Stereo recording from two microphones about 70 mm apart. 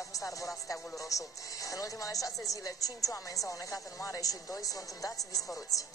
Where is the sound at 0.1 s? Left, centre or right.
Left.